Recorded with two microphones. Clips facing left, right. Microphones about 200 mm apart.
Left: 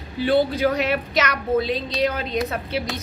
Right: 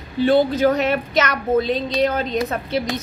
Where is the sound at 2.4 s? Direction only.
10° left (ahead or behind).